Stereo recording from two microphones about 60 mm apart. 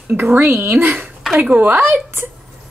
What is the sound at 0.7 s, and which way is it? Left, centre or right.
Speech, right.